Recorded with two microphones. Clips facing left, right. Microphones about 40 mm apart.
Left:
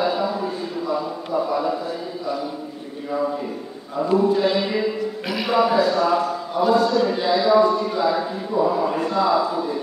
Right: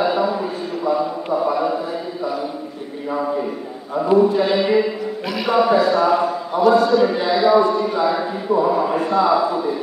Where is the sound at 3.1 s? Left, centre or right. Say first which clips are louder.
Right 2 dB; centre.